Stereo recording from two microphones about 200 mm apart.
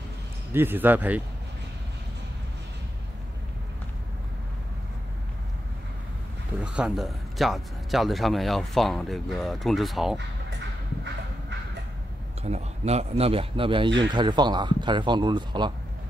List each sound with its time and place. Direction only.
0.5 s speech: 10° right (ahead or behind)
6.6 s speech: 5° right (ahead or behind)
12.4 s speech: 30° right (ahead or behind)